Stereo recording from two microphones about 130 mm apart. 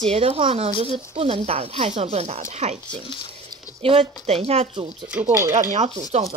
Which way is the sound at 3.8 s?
50° right (ahead or behind).